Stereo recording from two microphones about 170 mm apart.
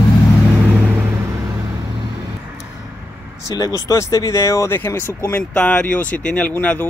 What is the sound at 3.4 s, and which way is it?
Speech, 20° left (ahead or behind).